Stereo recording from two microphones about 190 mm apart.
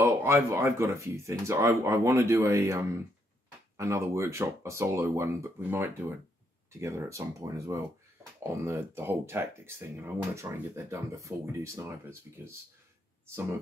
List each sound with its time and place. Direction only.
0.0 s speech: 10° right (ahead or behind)